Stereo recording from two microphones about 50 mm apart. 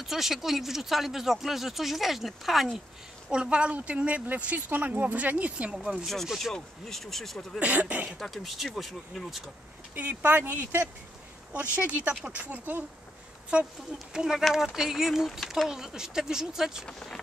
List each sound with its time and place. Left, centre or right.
0.0 s speech: centre
3.3 s speech: centre
6.2 s speech: centre
7.6 s speech: right
8.2 s speech: centre
9.9 s speech: right
13.5 s speech: right
13.9 s speech: centre
16.8 s speech: centre